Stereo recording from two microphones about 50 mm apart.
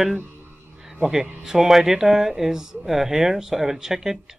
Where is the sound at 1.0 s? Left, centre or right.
Centre.